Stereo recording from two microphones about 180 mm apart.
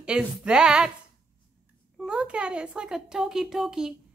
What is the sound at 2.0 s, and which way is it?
Speech, 5° right (ahead or behind).